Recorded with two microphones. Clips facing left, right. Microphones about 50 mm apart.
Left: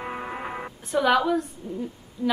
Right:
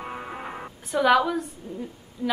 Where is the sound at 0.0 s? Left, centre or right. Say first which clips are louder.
Left 2 dB; centre.